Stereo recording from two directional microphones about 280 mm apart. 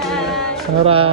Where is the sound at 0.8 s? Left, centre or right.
Centre.